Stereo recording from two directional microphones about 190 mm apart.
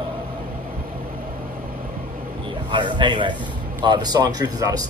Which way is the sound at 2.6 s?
25° right (ahead or behind).